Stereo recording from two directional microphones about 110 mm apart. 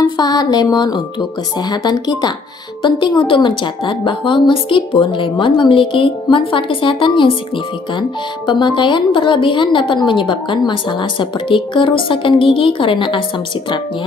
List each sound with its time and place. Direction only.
0.0 s a woman's voice: 40° left (ahead or behind)